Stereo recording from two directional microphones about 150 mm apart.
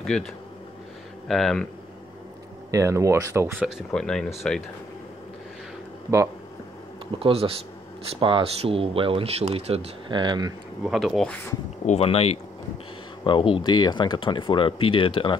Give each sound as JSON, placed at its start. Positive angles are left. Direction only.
{"t": 0.0, "sound": "speech", "side_deg": 5}
{"t": 1.3, "sound": "speech", "side_deg": 0}
{"t": 2.7, "sound": "speech", "side_deg": -20}
{"t": 3.9, "sound": "speech", "side_deg": 5}
{"t": 7.2, "sound": "speech", "side_deg": -40}
{"t": 10.1, "sound": "speech", "side_deg": -30}
{"t": 10.8, "sound": "speech", "side_deg": 0}
{"t": 11.8, "sound": "speech", "side_deg": 45}